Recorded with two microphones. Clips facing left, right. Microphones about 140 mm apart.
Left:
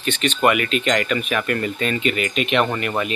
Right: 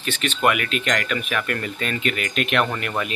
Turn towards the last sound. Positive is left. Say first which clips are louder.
# left 3 dB
turn(degrees=5)  # may be behind; listen again after turning